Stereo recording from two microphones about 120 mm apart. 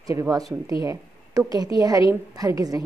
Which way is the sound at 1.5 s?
30° right (ahead or behind).